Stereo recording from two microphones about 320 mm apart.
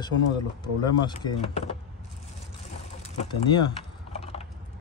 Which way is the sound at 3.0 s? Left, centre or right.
Centre.